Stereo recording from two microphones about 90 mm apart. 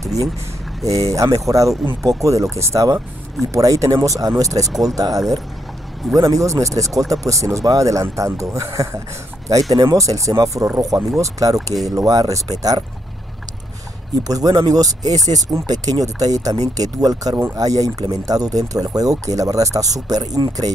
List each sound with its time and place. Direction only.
0.8 s speech: 40° right (ahead or behind)
14.2 s speech: 40° right (ahead or behind)